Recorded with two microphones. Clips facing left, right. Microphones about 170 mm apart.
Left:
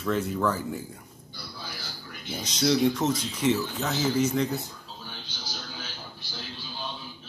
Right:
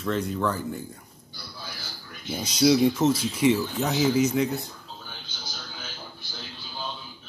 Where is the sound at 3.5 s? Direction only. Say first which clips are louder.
Even; 15° right (ahead or behind).